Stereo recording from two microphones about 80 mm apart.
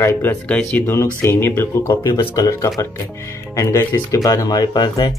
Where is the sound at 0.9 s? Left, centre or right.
Left.